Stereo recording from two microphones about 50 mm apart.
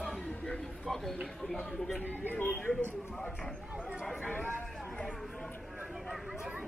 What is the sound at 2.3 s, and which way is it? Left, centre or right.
Speech, left.